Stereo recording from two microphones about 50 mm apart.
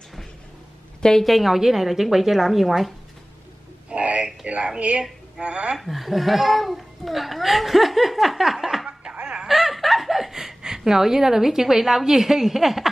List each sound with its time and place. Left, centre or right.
1.2 s a child's voice: centre
3.9 s a sound: right
4.5 s a woman's voice: right
5.8 s a child's voice: centre
9.1 s a sound: right
9.5 s snicker: centre